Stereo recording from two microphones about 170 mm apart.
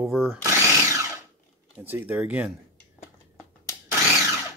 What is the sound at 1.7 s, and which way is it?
Speech, 10° right (ahead or behind).